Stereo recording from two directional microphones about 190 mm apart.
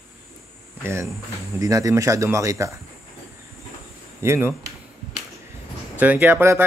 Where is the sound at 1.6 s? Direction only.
15° right (ahead or behind).